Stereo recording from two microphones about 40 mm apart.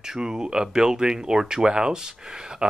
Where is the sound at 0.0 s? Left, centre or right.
Centre.